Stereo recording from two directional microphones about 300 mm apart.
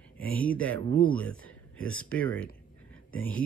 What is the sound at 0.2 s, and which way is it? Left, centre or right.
Speech, centre.